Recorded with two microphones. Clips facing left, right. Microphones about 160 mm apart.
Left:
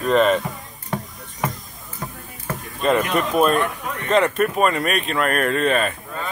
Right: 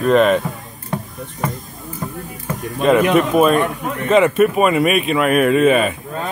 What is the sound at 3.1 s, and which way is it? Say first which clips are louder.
Speech: right 5 dB; centre (ahead or behind).